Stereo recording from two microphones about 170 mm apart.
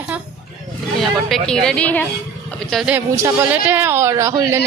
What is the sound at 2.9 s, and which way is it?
A man's voice, 15° right (ahead or behind).